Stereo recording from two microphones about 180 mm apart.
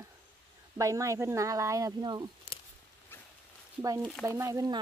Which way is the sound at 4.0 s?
5° left (ahead or behind).